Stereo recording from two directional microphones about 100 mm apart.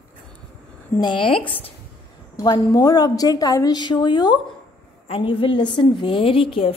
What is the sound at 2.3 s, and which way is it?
A woman's voice, 40° left (ahead or behind).